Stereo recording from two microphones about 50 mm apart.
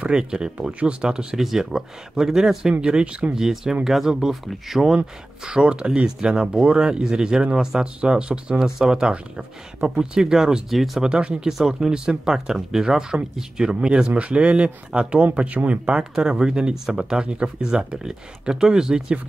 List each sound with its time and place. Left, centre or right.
0.0 s speech: centre
4.8 s speech: centre
11.0 s speech: centre